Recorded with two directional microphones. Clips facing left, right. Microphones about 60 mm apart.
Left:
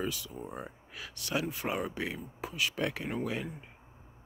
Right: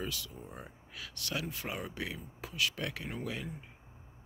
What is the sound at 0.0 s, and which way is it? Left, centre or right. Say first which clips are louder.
Speech: left 4 dB; left.